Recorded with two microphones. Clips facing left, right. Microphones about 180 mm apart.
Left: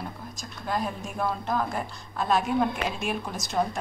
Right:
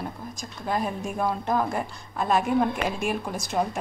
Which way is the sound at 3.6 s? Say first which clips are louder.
Even; 15° right (ahead or behind).